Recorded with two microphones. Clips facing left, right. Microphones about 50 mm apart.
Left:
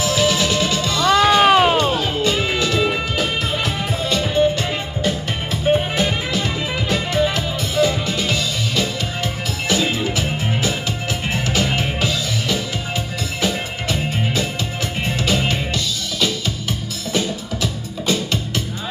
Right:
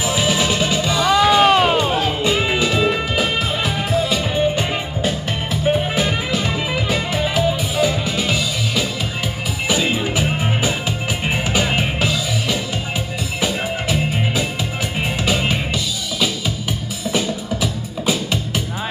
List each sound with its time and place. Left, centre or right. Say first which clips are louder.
0.0 s music: left 1 dB; centre
1.4 s music: left 1 dB; centre
2.0 s music: right 1 dB; centre
5.5 s music: left 1 dB; centre